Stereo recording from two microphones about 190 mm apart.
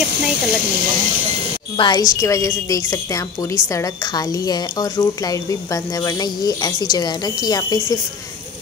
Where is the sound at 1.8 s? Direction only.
20° left (ahead or behind).